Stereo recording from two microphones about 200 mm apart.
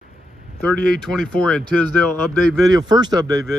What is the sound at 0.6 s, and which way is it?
Speech, 5° left (ahead or behind).